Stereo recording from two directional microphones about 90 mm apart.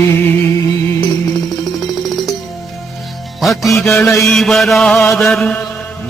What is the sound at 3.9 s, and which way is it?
Mantra, 35° left (ahead or behind).